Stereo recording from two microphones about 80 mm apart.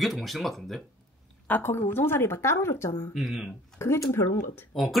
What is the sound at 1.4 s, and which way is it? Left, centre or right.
Speech, left.